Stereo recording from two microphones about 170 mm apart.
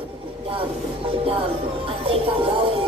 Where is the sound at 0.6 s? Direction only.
30° right (ahead or behind).